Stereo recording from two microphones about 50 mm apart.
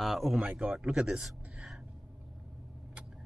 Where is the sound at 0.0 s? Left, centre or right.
Centre.